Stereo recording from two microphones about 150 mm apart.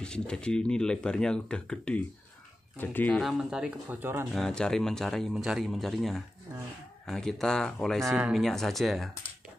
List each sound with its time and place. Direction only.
0.0 s speech: 5° left (ahead or behind); by 4.3 s 15° right (ahead or behind)
4.3 s speech: 5° left (ahead or behind)
8.0 s speech: 20° right (ahead or behind)
8.3 s speech: centre (ahead or behind)